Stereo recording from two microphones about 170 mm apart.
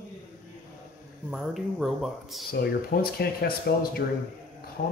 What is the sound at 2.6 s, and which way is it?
Speech, 65° left (ahead or behind).